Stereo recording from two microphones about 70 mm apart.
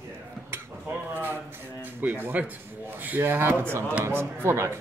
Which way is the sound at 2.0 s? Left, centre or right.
Right.